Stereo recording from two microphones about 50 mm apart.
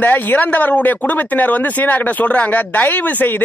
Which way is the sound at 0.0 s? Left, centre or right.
Left.